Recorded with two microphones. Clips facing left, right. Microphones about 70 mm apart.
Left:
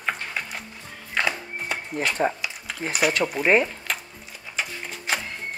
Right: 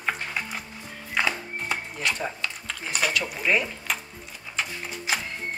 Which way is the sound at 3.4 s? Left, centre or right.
Left.